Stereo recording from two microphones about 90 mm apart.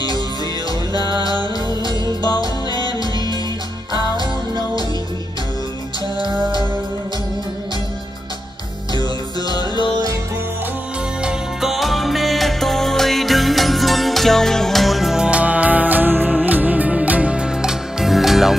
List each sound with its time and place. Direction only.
0.9 s music: 50° left (ahead or behind)
9.5 s music: 50° left (ahead or behind)
11.2 s music: 5° right (ahead or behind)